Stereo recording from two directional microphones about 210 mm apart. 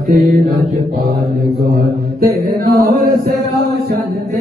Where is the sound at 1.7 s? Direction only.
45° right (ahead or behind).